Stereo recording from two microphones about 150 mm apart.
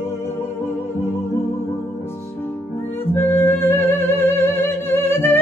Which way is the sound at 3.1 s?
15° left (ahead or behind).